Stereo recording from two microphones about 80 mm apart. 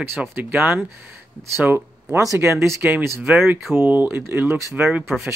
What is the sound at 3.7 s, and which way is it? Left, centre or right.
Speech, right.